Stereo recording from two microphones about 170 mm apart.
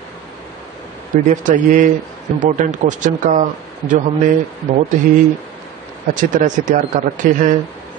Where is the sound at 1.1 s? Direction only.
50° right (ahead or behind).